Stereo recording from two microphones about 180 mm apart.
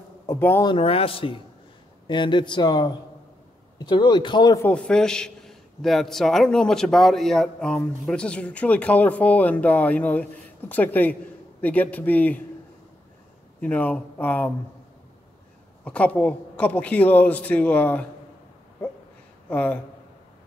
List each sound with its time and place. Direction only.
0.3 s a man's voice: 15° left (ahead or behind)
0.7 s speech: 30° left (ahead or behind)
4.6 s a man's voice: 5° left (ahead or behind)
13.6 s a man's voice: 10° left (ahead or behind)
15.8 s a man's voice: 5° left (ahead or behind)
19.5 s a man's voice: 10° left (ahead or behind)